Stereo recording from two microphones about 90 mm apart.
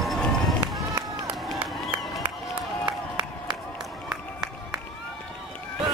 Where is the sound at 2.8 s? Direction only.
60° right (ahead or behind).